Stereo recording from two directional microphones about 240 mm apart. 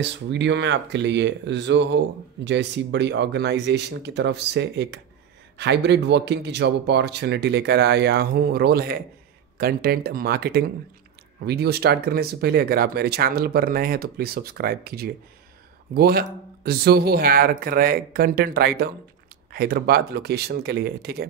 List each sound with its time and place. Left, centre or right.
0.0 s speech: right